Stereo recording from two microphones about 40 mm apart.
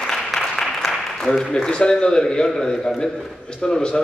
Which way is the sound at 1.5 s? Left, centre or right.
Centre.